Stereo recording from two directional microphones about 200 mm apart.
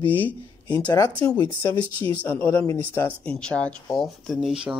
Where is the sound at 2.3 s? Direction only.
10° left (ahead or behind).